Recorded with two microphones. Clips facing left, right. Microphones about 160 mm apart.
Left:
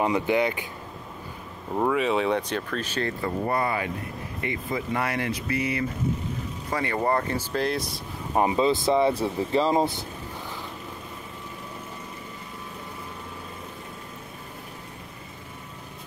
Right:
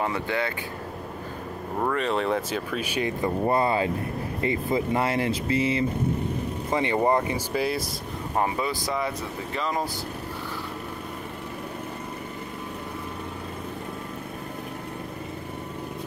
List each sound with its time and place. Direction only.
0.0 s speech: 15° left (ahead or behind)
1.8 s speech: 5° left (ahead or behind)
8.4 s speech: 20° left (ahead or behind)